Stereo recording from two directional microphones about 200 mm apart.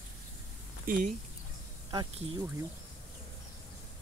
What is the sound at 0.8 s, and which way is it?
Speech, 45° right (ahead or behind).